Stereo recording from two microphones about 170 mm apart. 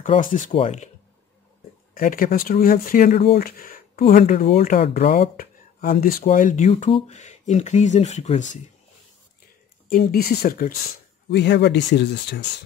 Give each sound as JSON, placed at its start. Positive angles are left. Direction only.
{"t": 0.2, "sound": "speech", "side_deg": 50}
{"t": 2.0, "sound": "speech", "side_deg": 55}
{"t": 3.1, "sound": "speech", "side_deg": 35}
{"t": 3.3, "sound": "speech", "side_deg": 55}
{"t": 9.8, "sound": "speech", "side_deg": 60}
{"t": 11.2, "sound": "speech", "side_deg": 90}